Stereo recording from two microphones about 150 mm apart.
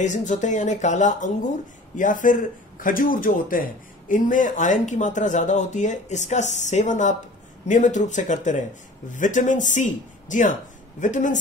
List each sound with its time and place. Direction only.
0.0 s speech: 55° left (ahead or behind)